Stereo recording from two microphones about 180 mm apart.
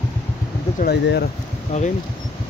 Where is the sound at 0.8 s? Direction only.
65° left (ahead or behind).